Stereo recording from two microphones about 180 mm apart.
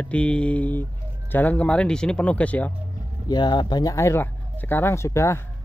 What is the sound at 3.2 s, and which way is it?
Speech, 25° left (ahead or behind).